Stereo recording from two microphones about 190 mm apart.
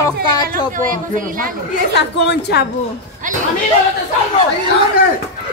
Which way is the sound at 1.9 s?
60° left (ahead or behind).